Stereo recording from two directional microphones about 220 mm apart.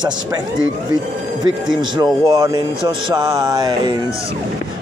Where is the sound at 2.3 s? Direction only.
15° right (ahead or behind).